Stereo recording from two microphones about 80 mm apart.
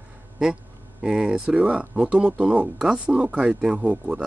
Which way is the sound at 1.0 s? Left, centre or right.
Centre.